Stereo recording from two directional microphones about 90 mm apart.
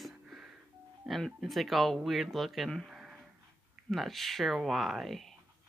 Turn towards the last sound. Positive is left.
turn(degrees=0)  # may be behind; listen again after turning